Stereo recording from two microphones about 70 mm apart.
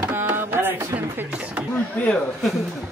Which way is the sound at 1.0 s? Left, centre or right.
Right.